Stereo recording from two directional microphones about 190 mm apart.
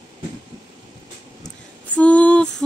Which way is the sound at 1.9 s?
5° left (ahead or behind).